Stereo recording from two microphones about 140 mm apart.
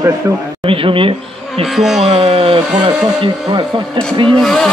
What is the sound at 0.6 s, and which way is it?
Speech, 40° right (ahead or behind).